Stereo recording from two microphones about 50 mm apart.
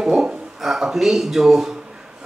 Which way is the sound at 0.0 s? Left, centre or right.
Centre.